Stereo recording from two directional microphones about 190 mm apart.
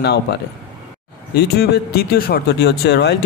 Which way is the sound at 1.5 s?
55° left (ahead or behind).